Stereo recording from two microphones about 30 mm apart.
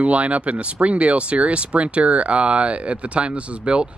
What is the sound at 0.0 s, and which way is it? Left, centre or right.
Speech, right.